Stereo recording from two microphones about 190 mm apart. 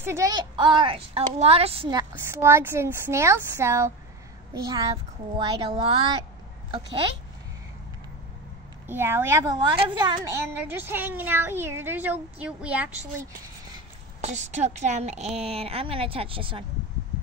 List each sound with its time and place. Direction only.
0.0 s a woman's voice: 15° right (ahead or behind)
2.1 s a woman's voice: 15° right (ahead or behind)
5.4 s a woman's voice: 25° right (ahead or behind)
8.8 s a woman's voice: 10° right (ahead or behind)
10.6 s a woman's voice: 10° right (ahead or behind)
14.2 s a woman's voice: 35° right (ahead or behind)